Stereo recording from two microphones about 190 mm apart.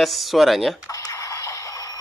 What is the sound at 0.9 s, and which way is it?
Music, 15° left (ahead or behind).